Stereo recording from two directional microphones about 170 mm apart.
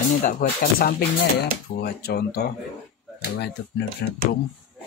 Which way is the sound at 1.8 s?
70° left (ahead or behind).